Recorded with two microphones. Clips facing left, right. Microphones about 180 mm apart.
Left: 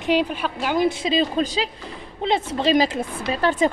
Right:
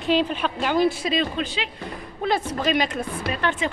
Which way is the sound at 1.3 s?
40° left (ahead or behind).